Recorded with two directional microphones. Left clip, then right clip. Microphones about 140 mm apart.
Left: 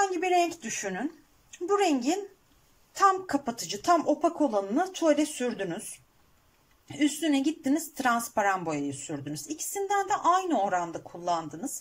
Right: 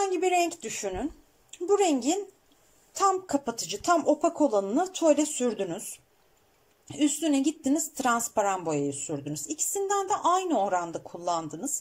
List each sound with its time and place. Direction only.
0.1 s a woman's voice: 20° right (ahead or behind)
6.9 s a woman's voice: 20° right (ahead or behind)